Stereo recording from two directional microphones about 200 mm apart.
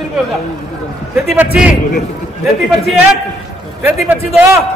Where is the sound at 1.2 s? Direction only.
5° right (ahead or behind).